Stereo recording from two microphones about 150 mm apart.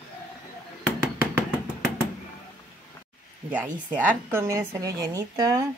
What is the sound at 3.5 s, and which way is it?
A woman's voice, 10° right (ahead or behind).